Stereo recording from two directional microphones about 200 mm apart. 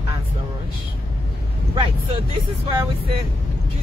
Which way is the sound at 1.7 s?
25° right (ahead or behind).